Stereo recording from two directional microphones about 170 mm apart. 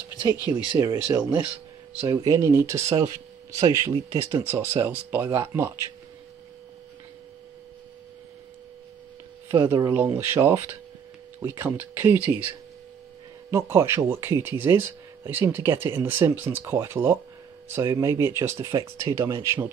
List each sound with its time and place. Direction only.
0.2 s speech: 20° right (ahead or behind)
9.5 s speech: 15° right (ahead or behind)
13.5 s speech: 15° right (ahead or behind)